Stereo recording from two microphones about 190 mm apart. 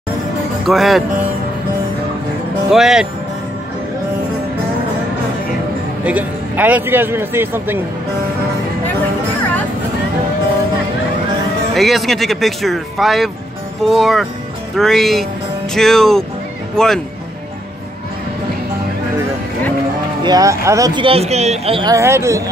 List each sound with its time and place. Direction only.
0.7 s speech: centre (ahead or behind)
2.7 s speech: 5° right (ahead or behind)
6.0 s speech: 10° right (ahead or behind)
11.7 s speech: centre (ahead or behind)
20.2 s speech: 15° right (ahead or behind)
21.9 s speech: 15° right (ahead or behind)